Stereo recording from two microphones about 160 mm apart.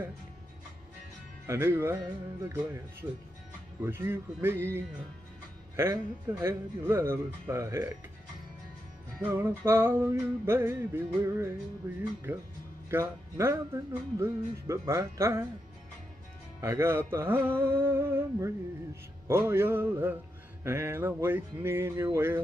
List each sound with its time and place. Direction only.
1.5 s speech: 15° right (ahead or behind)
9.2 s speech: 15° right (ahead or behind)
16.6 s speech: 15° right (ahead or behind)